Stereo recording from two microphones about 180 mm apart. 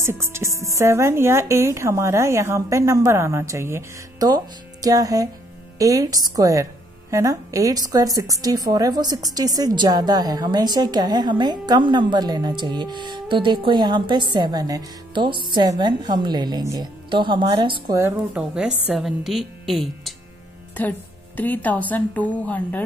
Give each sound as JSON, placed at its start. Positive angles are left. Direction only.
{"t": 0.0, "sound": "a woman's voice", "side_deg": -15}
{"t": 17.9, "sound": "speech", "side_deg": -15}
{"t": 18.5, "sound": "a woman's voice", "side_deg": -5}
{"t": 21.4, "sound": "a woman's voice", "side_deg": 10}